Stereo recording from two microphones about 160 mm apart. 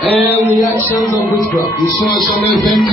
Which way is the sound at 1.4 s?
20° right (ahead or behind).